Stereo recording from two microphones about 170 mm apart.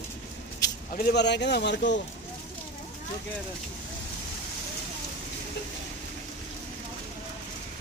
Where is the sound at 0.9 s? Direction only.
85° left.